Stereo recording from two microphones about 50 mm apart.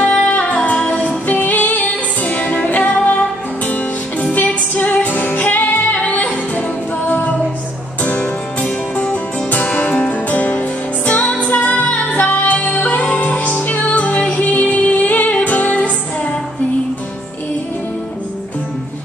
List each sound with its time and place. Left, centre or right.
0.0 s music: left